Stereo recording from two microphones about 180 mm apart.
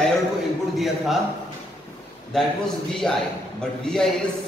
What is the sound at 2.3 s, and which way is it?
A man's voice, 5° left (ahead or behind).